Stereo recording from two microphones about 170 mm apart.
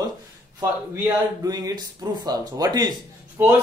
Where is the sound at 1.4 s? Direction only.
20° right (ahead or behind).